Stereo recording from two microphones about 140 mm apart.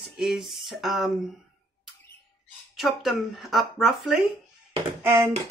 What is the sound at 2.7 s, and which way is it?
Speech, centre (ahead or behind).